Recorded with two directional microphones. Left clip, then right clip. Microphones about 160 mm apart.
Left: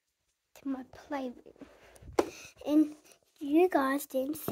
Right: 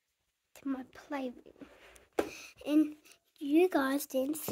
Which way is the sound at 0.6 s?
10° right (ahead or behind).